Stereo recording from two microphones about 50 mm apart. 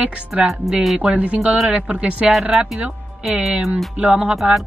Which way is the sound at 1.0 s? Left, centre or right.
Right.